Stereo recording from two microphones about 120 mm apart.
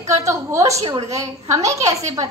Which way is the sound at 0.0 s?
25° right (ahead or behind).